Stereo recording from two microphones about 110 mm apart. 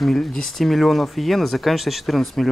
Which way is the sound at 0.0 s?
5° left (ahead or behind).